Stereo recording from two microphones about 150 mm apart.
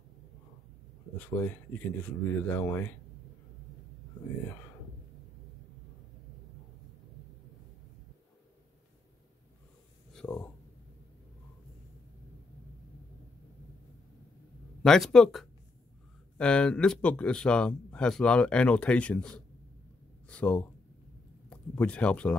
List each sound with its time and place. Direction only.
1.1 s speech: 10° left (ahead or behind)
10.1 s a sound: 10° left (ahead or behind)
14.8 s speech: 5° left (ahead or behind)